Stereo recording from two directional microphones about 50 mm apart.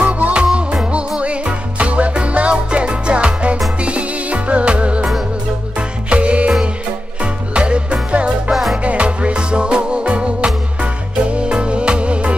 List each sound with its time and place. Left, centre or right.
0.0 s music: right
8.5 s music: centre
8.8 s music: right